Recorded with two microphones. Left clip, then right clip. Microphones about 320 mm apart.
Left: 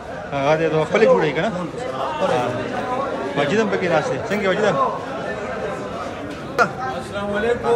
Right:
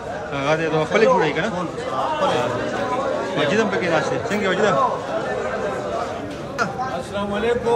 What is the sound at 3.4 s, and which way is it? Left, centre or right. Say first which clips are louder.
A man's voice: left 1 dB; centre.